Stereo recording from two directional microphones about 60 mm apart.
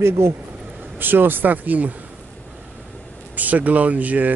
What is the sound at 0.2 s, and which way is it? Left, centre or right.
Speech, right.